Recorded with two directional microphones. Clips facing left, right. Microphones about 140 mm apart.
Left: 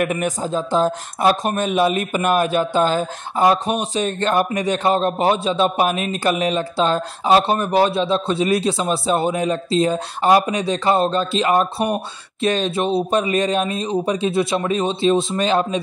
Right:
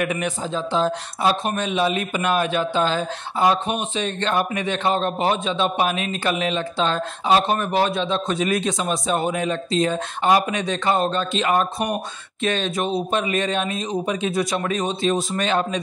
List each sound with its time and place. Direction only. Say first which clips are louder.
0.0 s speech: left 3 dB; 45° left (ahead or behind)